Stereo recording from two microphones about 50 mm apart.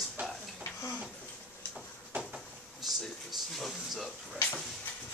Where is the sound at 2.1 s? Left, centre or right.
Right.